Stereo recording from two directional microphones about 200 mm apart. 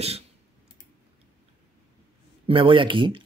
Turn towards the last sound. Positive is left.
turn(degrees=-25)  # may be behind; listen again after turning